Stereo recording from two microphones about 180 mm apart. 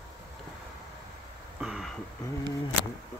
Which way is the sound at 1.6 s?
5° right (ahead or behind).